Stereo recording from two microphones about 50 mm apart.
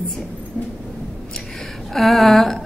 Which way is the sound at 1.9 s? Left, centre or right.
Centre.